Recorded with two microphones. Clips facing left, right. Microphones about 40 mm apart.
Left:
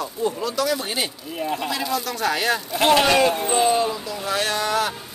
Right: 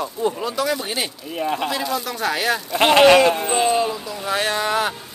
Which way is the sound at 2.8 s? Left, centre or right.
Right.